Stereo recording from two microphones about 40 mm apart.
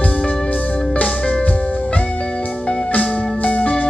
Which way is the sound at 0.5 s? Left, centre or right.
Left.